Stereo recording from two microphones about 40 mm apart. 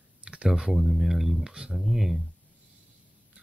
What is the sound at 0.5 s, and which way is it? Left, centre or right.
Speech, centre.